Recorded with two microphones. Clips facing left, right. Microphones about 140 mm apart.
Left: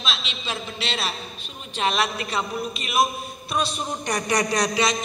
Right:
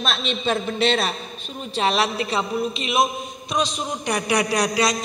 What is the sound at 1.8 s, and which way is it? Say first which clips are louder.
A man's voice: right 3 dB; 30° right (ahead or behind).